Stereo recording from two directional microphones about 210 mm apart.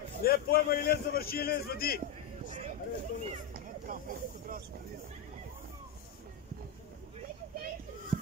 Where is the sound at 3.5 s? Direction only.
40° right (ahead or behind).